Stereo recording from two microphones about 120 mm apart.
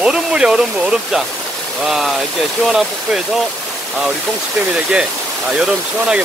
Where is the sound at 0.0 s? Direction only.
5° right (ahead or behind).